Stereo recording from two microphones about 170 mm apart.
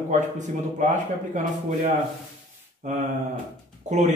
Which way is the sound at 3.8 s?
45° right (ahead or behind).